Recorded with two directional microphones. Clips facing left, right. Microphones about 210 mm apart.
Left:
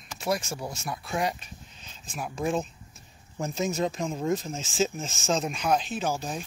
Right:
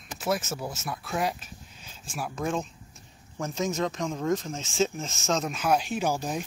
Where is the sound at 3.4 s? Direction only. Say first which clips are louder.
Left 1 dB; 10° left (ahead or behind).